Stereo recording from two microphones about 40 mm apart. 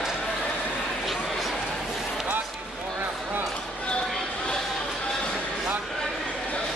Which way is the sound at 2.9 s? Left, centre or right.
Right.